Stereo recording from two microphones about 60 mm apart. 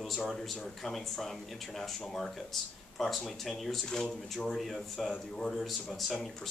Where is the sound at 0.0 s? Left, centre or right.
Centre.